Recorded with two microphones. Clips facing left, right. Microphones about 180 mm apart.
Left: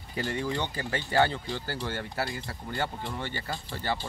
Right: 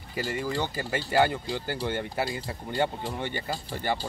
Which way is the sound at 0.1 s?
5° right (ahead or behind).